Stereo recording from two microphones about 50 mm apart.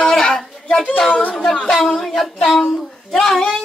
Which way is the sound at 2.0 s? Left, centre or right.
Centre.